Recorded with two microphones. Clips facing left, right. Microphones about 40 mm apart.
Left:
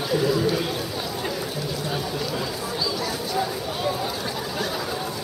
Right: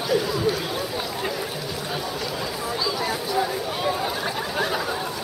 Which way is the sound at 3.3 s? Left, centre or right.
Centre.